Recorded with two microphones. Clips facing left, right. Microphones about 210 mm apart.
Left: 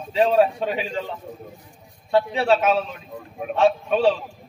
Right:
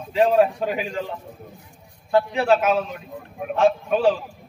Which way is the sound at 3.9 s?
30° left (ahead or behind).